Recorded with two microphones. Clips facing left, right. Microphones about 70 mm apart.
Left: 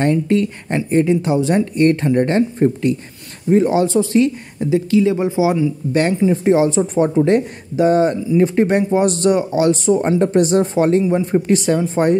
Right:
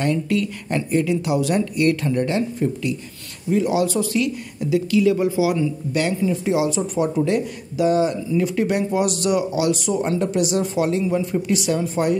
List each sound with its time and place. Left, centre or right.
0.0 s speech: left
5.9 s speech: left